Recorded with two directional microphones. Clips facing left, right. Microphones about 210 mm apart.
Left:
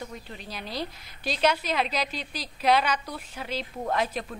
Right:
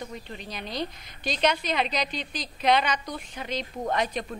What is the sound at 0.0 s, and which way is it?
A woman's voice, centre (ahead or behind).